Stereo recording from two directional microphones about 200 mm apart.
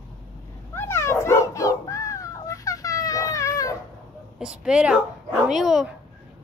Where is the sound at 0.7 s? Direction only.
10° left (ahead or behind).